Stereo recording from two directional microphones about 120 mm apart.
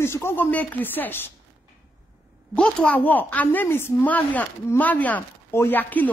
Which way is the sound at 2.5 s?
10° left (ahead or behind).